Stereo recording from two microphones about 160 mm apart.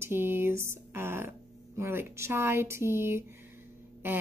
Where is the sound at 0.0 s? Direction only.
15° right (ahead or behind).